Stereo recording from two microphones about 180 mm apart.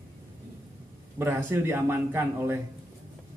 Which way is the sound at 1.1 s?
10° right (ahead or behind).